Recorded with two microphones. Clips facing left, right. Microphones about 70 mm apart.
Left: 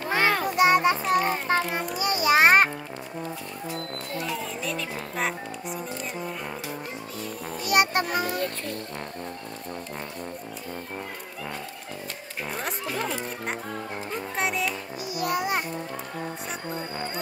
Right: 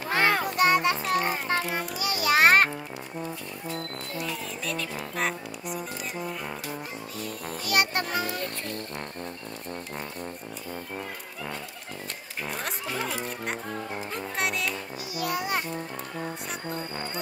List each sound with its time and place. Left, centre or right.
0.1 s music: centre
0.6 s music: centre
1.5 s a child's voice: left
2.1 s music: centre
4.2 s music: centre
7.6 s music: centre
12.6 s speech: centre
14.1 s music: centre
15.1 s a child's voice: centre